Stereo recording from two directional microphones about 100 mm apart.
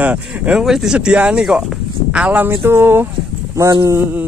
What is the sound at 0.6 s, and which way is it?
Speech, 5° right (ahead or behind).